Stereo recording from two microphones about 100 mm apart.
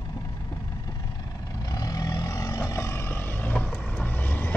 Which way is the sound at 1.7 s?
40° left (ahead or behind).